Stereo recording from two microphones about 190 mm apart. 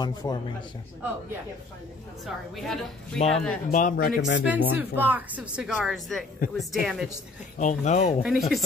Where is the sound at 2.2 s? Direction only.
Centre (ahead or behind).